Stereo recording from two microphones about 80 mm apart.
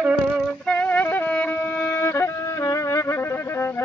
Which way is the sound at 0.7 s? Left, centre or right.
Centre.